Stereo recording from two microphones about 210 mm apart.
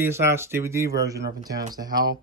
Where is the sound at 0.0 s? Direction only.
10° right (ahead or behind).